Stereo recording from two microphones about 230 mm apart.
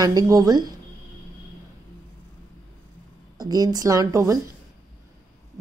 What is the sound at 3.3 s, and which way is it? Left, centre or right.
A woman's voice, centre.